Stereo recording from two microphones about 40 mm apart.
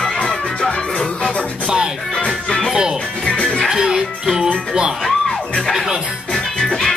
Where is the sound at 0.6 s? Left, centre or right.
Left.